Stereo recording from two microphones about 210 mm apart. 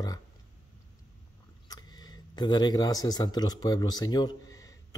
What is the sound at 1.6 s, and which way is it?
Speech, 20° left (ahead or behind).